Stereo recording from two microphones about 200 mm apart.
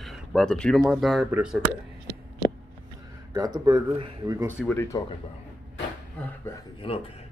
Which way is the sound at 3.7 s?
20° right (ahead or behind).